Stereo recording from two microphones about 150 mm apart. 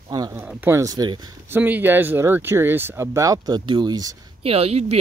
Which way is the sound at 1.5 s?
10° right (ahead or behind).